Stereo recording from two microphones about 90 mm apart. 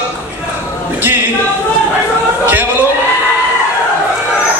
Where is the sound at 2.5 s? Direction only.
20° right (ahead or behind).